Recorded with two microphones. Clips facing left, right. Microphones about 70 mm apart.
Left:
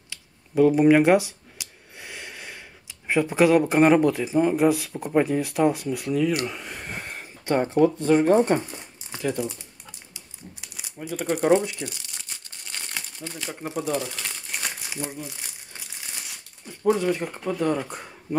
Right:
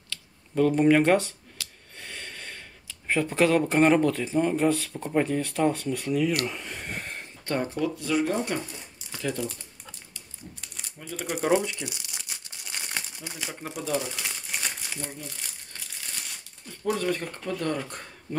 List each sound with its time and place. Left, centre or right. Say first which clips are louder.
0.1 s a sound: left 4 dB; centre
3.1 s speech: left 4 dB; centre
6.4 s a sound: left 1 dB; centre
7.4 s speech: left 7 dB; left
8.0 s speech: left 8 dB; left
9.2 s speech: left 4 dB; centre
10.1 s typewriter: left 1 dB; centre
11.2 s speech: left 4 dB; centre
11.7 s crumpling: left 2 dB; centre
13.6 s crumpling: left 3 dB; centre
16.8 s speech: left 5 dB; centre